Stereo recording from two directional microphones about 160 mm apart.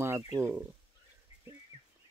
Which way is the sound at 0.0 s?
15° right (ahead or behind).